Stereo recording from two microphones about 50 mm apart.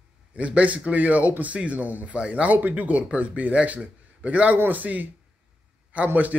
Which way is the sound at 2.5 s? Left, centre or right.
Right.